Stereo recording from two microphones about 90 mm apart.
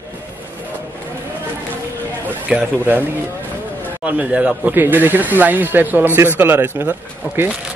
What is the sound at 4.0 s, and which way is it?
Speech, 15° right (ahead or behind).